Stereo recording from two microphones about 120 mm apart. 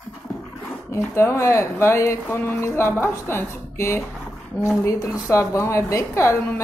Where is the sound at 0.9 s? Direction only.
25° left (ahead or behind).